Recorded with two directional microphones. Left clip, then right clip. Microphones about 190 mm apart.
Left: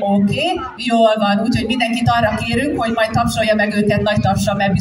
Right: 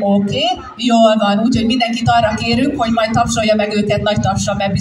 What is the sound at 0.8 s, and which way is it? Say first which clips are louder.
Speech: right 2 dB; 10° right (ahead or behind).